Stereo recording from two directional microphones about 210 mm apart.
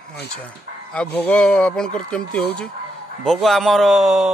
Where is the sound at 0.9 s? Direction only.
5° left (ahead or behind).